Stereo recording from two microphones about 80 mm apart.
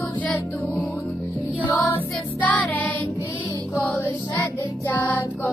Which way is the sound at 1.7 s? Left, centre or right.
Left.